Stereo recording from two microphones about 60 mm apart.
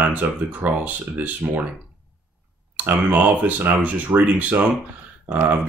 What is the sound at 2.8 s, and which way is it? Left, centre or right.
Speech, right.